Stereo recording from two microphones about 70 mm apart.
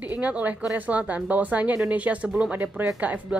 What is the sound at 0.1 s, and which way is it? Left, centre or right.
A woman's voice, right.